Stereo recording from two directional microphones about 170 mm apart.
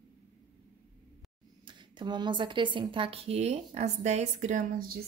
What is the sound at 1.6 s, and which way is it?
Speech, 25° right (ahead or behind).